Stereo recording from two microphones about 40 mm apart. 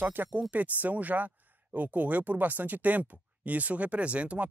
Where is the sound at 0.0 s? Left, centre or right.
Right.